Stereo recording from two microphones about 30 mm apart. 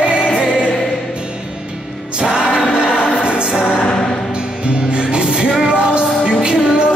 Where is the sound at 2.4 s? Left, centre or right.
Right.